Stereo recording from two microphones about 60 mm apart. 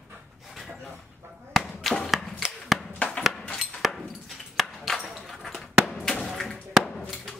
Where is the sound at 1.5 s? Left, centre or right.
Centre.